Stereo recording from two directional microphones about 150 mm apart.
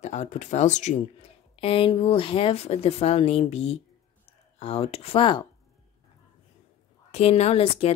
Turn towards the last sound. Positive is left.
turn(degrees=40)  # may be behind; listen again after turning